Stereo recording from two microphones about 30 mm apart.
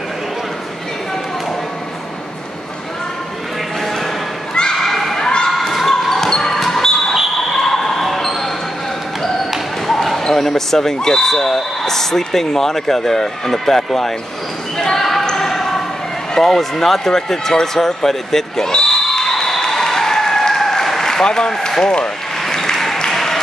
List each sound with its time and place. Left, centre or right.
4.8 s children playing: centre
5.1 s thump: left
5.6 s basketball bounce: centre
7.5 s a sound: centre
9.8 s basketball bounce: centre
10.2 s speech: centre
14.8 s basketball bounce: centre
15.3 s a sound: centre
16.3 s speech: centre
18.7 s a sound: left
19.2 s a sound: centre
19.8 s applause: centre